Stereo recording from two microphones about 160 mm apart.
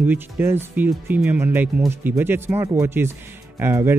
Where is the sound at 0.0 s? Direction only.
15° right (ahead or behind).